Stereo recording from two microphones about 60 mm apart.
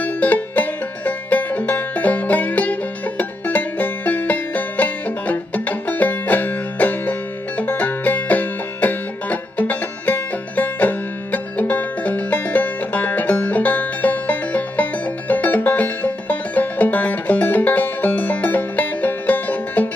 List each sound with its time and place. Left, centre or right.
0.0 s music: left